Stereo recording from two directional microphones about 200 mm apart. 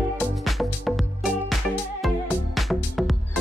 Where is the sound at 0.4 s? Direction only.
Centre (ahead or behind).